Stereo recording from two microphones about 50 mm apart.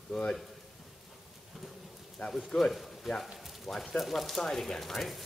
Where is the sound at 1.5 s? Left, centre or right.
Centre.